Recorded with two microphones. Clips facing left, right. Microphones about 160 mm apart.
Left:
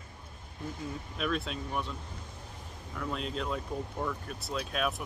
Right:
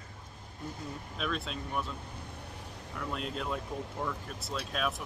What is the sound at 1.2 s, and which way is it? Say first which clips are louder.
Speech: left 3 dB; centre (ahead or behind).